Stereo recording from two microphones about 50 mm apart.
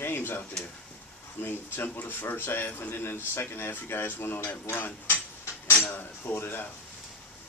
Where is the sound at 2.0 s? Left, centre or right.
Left.